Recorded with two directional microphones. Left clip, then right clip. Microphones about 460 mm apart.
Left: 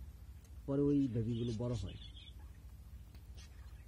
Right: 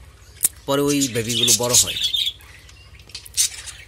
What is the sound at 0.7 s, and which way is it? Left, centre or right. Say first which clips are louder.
Speech: right 15 dB; centre.